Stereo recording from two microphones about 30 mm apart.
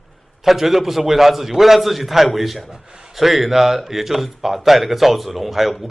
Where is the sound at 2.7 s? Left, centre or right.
Right.